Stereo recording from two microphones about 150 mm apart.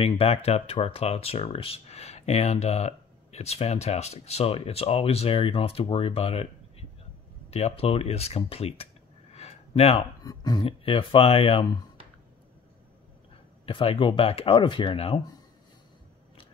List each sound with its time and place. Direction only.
0.0 s speech: 40° left (ahead or behind)
9.3 s a sound: 45° left (ahead or behind)
10.2 s speech: 25° left (ahead or behind)
10.6 s speech: 40° left (ahead or behind)
13.7 s speech: 35° left (ahead or behind)